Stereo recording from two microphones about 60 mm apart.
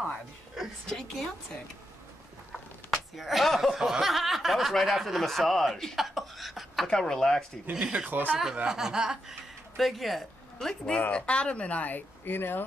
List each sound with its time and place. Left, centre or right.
0.8 s speech: centre
2.9 s speech: centre
6.9 s speech: centre
7.8 s speech: centre
8.1 s speech: right
8.6 s speech: centre
11.1 s speech: centre; by 12.6 s left